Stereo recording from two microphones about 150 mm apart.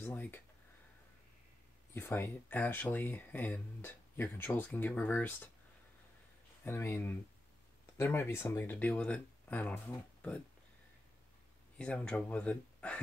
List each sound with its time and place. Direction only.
0.0 s speech: 10° left (ahead or behind)
2.0 s speech: 15° left (ahead or behind)
6.6 s speech: 15° left (ahead or behind)
11.8 s speech: 5° left (ahead or behind)